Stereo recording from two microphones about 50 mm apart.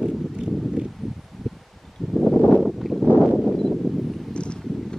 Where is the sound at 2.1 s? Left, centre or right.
Centre.